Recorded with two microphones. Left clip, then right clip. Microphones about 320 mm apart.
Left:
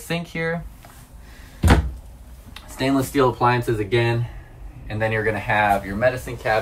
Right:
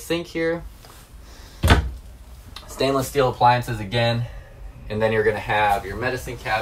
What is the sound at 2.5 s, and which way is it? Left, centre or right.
Speech, centre.